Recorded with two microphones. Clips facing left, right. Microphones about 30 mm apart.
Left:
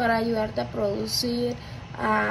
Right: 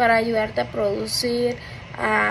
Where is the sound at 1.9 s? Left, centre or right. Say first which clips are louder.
Right 3 dB; right.